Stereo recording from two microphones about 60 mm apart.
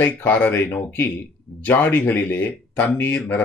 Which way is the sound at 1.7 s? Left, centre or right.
Left.